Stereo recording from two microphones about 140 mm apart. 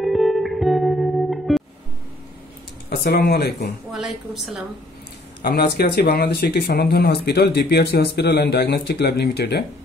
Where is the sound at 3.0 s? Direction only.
90° left.